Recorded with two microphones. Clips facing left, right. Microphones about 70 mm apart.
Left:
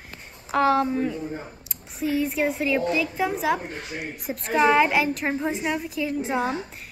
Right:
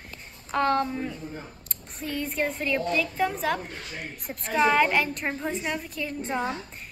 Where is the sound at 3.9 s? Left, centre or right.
Centre.